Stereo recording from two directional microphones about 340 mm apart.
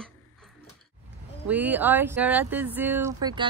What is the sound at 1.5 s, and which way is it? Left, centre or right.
Speech, centre.